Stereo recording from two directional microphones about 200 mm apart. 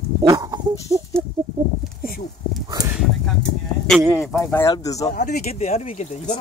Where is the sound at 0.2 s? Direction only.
20° right (ahead or behind).